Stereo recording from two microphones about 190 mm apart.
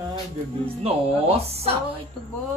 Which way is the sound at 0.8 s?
30° right (ahead or behind).